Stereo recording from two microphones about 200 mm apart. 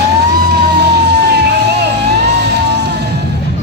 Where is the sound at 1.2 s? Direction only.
55° right (ahead or behind).